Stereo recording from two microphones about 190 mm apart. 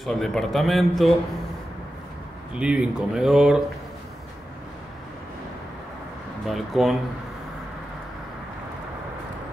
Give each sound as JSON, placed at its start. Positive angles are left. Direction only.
{"t": 0.0, "sound": "a man's voice", "side_deg": 0}
{"t": 2.6, "sound": "a man's voice", "side_deg": -5}
{"t": 6.4, "sound": "a man's voice", "side_deg": 0}